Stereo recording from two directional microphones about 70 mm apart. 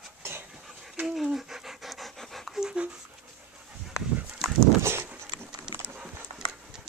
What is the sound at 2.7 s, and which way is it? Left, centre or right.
Dog, centre.